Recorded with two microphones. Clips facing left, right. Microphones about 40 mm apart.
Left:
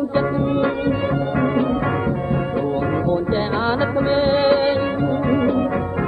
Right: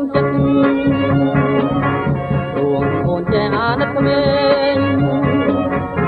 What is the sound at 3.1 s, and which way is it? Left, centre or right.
Music, right.